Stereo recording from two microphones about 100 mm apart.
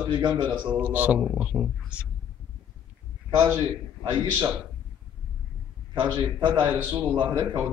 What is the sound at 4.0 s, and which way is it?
Speech, 50° right (ahead or behind).